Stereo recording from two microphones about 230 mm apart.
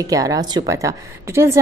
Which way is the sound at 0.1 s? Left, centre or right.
Centre.